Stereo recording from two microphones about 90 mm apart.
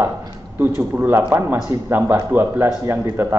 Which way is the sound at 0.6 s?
25° right (ahead or behind).